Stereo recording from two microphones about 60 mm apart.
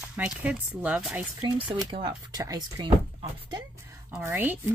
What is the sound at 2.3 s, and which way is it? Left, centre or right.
Speech, right.